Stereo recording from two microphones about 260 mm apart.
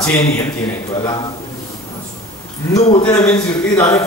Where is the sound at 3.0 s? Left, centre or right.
Centre.